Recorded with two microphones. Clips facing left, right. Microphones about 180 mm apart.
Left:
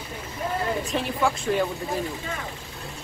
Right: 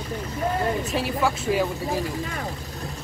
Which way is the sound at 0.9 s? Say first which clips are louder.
Right 1 dB; 5° right (ahead or behind).